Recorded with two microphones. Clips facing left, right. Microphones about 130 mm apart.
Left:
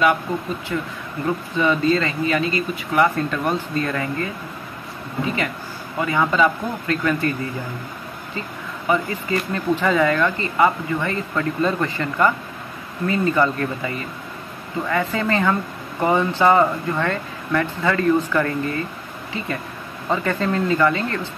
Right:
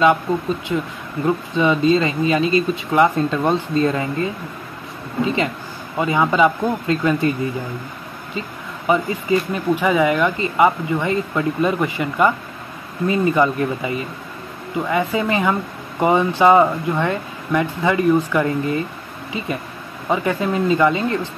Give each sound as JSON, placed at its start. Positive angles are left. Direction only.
{"t": 0.0, "sound": "speech", "side_deg": -20}
{"t": 8.4, "sound": "speech", "side_deg": -20}